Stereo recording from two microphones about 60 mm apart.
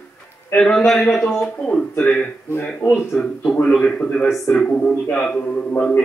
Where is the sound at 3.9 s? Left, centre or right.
Left.